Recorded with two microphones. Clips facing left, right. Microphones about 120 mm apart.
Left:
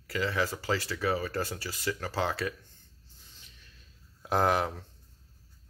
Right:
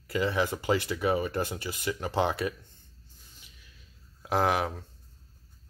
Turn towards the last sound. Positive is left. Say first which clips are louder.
# even
turn(degrees=-5)  # may be behind; listen again after turning